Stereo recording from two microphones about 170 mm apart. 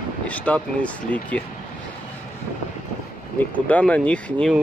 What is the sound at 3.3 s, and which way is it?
Speech, 10° left (ahead or behind).